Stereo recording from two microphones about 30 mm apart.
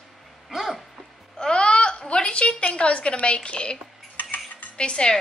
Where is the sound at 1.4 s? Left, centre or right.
Left.